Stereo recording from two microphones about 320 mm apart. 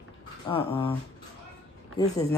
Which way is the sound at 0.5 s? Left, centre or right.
Centre.